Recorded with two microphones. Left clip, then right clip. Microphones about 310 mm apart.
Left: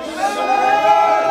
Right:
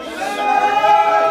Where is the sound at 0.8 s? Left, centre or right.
Centre.